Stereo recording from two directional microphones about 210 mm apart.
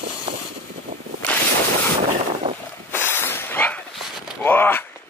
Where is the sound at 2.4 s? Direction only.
25° right (ahead or behind).